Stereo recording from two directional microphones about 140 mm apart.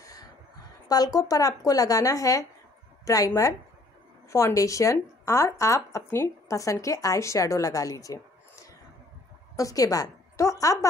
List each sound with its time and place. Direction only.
0.8 s a woman's voice: 25° left (ahead or behind)
9.6 s a woman's voice: 25° left (ahead or behind)